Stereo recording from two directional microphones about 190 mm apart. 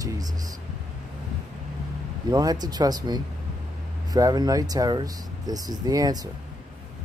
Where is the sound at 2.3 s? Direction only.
20° right (ahead or behind).